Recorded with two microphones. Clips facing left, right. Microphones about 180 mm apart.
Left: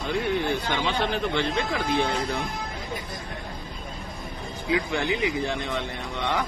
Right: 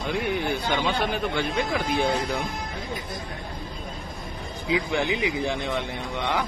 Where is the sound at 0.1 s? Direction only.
15° right (ahead or behind).